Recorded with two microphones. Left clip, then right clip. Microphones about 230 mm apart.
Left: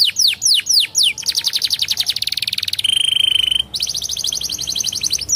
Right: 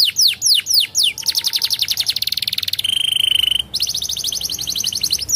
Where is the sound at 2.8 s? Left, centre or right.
Centre.